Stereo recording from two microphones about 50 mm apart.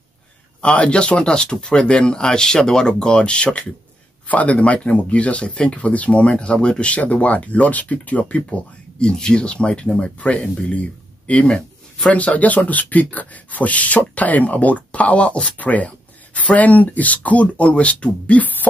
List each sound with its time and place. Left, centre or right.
0.6 s speech: left